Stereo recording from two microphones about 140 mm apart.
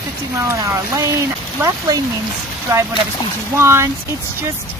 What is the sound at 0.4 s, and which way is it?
Speech, 20° right (ahead or behind).